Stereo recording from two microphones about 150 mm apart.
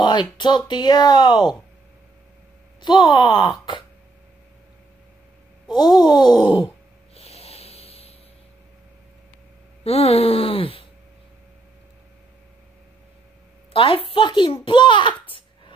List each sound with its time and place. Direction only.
0.0 s speech: 30° left (ahead or behind)
2.8 s speech: 30° left (ahead or behind)
5.7 s speech: 30° left (ahead or behind)
7.2 s a sound: 40° left (ahead or behind)
9.8 s a child's voice: 40° left (ahead or behind)
13.7 s a child's voice: 35° left (ahead or behind)
15.2 s baby laughter: 35° left (ahead or behind)